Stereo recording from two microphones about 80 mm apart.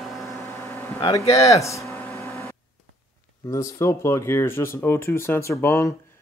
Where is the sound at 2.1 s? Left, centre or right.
Left.